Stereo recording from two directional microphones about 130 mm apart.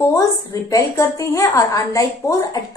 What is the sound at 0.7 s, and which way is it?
A woman's voice, 25° left (ahead or behind).